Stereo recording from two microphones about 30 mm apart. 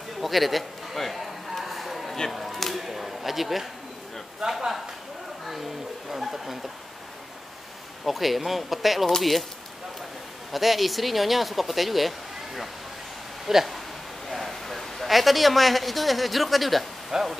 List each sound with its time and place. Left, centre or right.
0.2 s a man's voice: centre
1.6 s a sound: centre
2.0 s a sound: centre
2.3 s speech: centre
4.4 s speech: centre
6.1 s speech: centre
8.0 s speech: centre
10.5 s speech: centre
13.5 s speech: centre
14.2 s a woman's voice: centre
17.1 s speech: centre